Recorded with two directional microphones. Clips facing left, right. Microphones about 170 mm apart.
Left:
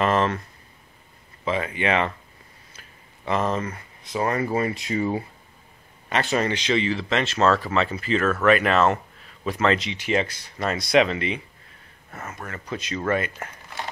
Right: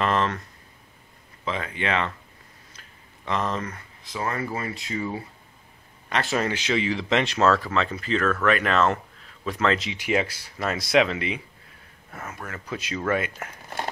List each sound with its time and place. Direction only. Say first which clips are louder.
0.0 s a sound: left 3 dB; 5° left (ahead or behind)
1.4 s speech: left 4 dB; 10° left (ahead or behind)
3.3 s speech: left 3 dB; 10° left (ahead or behind)
4.0 s speech: left 5 dB; 20° left (ahead or behind)
6.0 s speech: left 2 dB; centre (ahead or behind); by 7.3 s 15° right (ahead or behind)
7.6 s speech: left 2 dB; 5° left (ahead or behind)